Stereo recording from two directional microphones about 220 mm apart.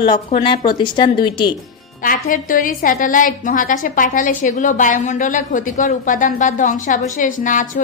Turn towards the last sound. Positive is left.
turn(degrees=35)  # may be behind; listen again after turning